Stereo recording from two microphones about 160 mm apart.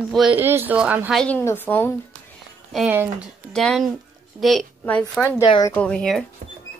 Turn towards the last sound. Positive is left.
turn(degrees=5)  # may be behind; listen again after turning